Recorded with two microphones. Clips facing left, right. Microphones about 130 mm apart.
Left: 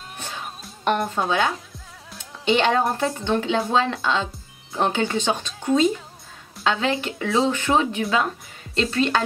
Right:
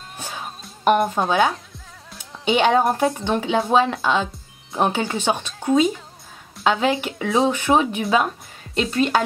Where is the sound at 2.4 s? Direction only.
10° right (ahead or behind).